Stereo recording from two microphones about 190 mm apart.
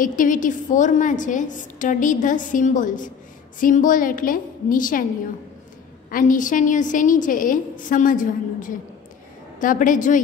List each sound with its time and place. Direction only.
0.0 s a woman's voice: 45° left (ahead or behind)
6.0 s a woman's voice: 45° left (ahead or behind)